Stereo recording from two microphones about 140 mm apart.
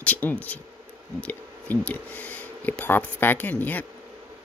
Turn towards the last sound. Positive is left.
turn(degrees=10)  # may be behind; listen again after turning